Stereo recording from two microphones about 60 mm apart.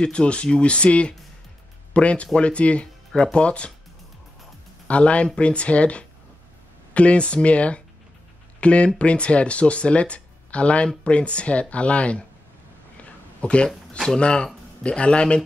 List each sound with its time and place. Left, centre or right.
0.0 s speech: centre
4.8 s speech: left
13.4 s speech: centre
13.7 s speech: centre
14.1 s speech: centre